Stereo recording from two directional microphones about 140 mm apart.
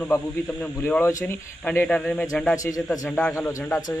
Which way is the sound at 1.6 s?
10° left (ahead or behind).